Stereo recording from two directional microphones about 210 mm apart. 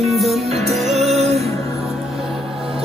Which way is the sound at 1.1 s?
30° right (ahead or behind).